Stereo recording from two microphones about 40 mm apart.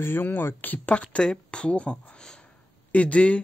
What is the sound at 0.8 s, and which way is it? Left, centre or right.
Speech, left.